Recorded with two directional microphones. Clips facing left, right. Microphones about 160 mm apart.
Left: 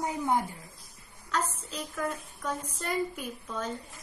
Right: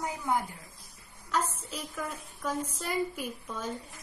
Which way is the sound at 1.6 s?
5° right (ahead or behind).